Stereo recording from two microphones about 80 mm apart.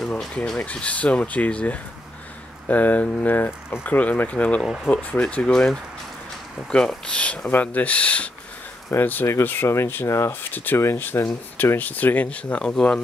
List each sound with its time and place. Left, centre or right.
0.2 s speech: centre; by 10.3 s left
10.5 s speech: left; by 13.0 s centre